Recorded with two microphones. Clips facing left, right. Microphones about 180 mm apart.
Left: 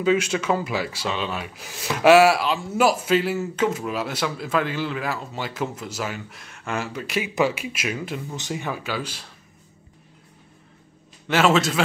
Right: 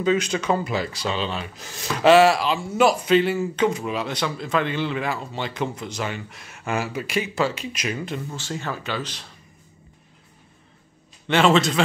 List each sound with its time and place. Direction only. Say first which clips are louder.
0.0 s speech: left 1 dB; 5° left (ahead or behind)
7.3 s speech: left 2 dB; 10° left (ahead or behind)
11.2 s speech: right 1 dB; 5° left (ahead or behind)